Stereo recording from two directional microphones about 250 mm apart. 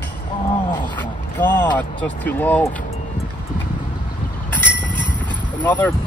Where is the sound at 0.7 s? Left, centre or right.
Centre.